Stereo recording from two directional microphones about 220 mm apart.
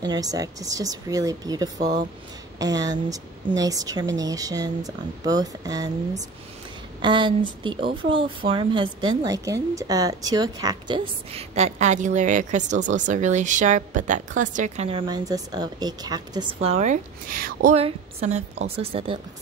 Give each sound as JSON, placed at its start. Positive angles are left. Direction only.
{"t": 0.0, "sound": "speech", "side_deg": -15}
{"t": 1.8, "sound": "speech", "side_deg": -35}
{"t": 2.6, "sound": "speech", "side_deg": -15}
{"t": 7.0, "sound": "speech", "side_deg": -20}
{"t": 15.0, "sound": "speech", "side_deg": -15}